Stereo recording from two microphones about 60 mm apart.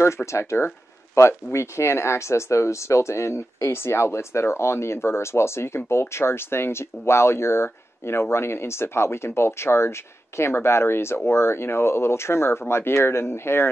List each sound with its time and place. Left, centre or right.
0.0 s speech: left